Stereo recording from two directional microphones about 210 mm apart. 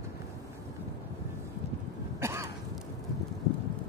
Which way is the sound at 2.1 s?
15° right (ahead or behind).